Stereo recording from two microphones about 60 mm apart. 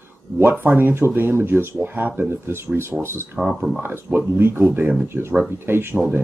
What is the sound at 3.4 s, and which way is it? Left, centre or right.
Speech, centre.